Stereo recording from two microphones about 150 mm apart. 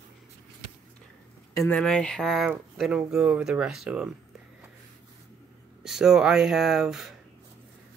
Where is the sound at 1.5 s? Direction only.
10° left (ahead or behind).